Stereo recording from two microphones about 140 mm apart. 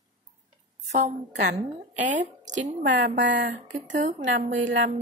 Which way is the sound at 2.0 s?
60° right (ahead or behind).